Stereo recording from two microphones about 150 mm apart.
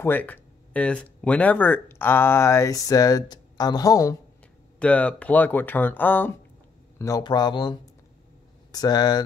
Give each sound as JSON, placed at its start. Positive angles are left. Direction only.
{"t": 0.0, "sound": "speech", "side_deg": 10}
{"t": 4.7, "sound": "speech", "side_deg": 10}
{"t": 7.0, "sound": "speech", "side_deg": 25}